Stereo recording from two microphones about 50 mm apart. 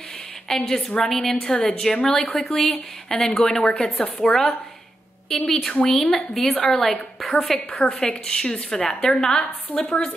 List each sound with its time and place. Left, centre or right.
0.5 s a woman's voice: centre
5.7 s a woman's voice: left
5.9 s a woman's voice: centre
7.5 s a woman's voice: left
8.1 s a woman's voice: centre
9.8 s a woman's voice: left